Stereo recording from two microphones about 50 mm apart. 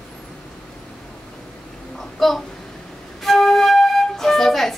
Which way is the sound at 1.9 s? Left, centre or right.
Centre.